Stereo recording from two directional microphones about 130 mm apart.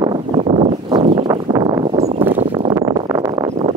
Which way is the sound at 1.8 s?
50° right (ahead or behind).